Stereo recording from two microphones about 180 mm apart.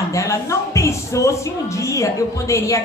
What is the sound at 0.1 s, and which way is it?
Speech, 15° left (ahead or behind).